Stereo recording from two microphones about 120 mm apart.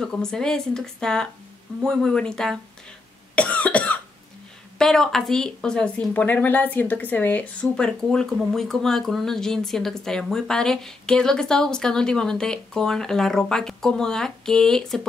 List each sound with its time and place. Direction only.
0.0 s speech: 5° left (ahead or behind)
3.3 s cough: 10° left (ahead or behind)
4.7 s speech: 5° left (ahead or behind)